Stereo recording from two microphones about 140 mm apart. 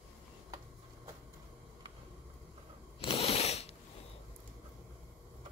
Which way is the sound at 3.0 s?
45° left (ahead or behind).